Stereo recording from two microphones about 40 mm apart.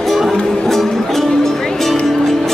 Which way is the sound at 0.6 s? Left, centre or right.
Centre.